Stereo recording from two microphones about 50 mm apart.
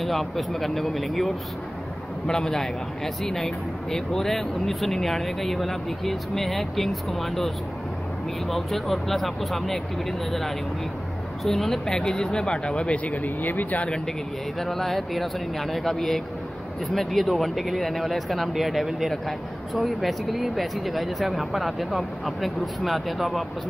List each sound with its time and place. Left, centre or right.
0.0 s speech: centre
2.2 s speech: centre
11.4 s speech: centre; by 13.8 s left
14.6 s speech: centre